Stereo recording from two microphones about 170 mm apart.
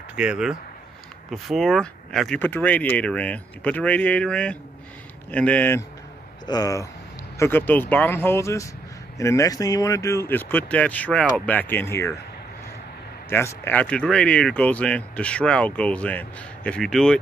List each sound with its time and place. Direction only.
0.1 s speech: 5° right (ahead or behind); by 5.9 s 10° left (ahead or behind)
6.4 s speech: 20° left (ahead or behind)
13.3 s speech: 15° left (ahead or behind)